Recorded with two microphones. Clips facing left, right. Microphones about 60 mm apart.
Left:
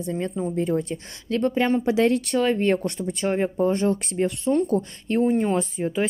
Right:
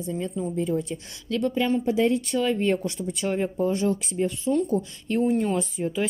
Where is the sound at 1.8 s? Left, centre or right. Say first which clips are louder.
Left 2 dB; left.